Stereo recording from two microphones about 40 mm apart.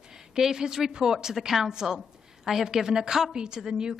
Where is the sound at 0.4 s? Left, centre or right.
Centre.